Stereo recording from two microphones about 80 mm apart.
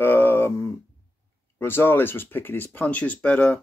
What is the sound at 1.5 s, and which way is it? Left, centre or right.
Speech, left.